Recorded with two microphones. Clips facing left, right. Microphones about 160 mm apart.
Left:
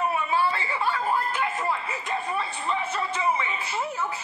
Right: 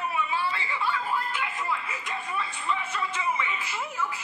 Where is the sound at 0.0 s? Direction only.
40° left (ahead or behind).